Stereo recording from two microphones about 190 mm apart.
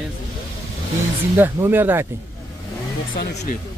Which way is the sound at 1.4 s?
10° right (ahead or behind).